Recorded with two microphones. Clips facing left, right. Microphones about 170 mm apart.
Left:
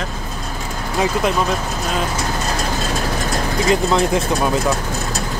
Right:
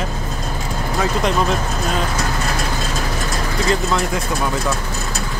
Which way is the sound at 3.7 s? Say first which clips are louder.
Left 4 dB; 20° left (ahead or behind).